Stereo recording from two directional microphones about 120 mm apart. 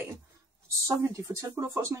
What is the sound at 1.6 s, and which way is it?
Speech, 20° right (ahead or behind).